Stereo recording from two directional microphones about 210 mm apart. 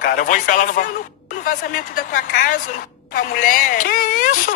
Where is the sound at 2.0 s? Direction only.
40° left (ahead or behind).